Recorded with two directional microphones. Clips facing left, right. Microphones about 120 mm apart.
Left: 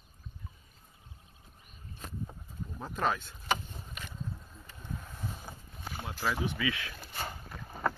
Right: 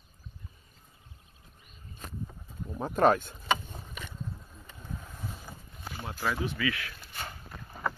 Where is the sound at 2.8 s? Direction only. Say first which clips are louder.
Right 9 dB; 50° right (ahead or behind).